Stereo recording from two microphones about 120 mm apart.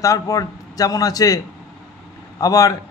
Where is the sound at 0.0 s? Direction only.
30° left (ahead or behind).